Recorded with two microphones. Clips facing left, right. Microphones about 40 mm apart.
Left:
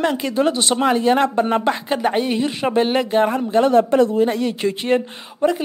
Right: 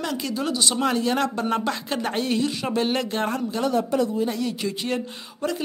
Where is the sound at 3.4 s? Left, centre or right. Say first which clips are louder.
Left 9 dB; left.